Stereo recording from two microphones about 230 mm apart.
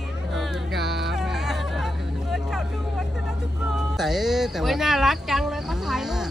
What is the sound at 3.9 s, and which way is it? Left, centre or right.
Music, centre.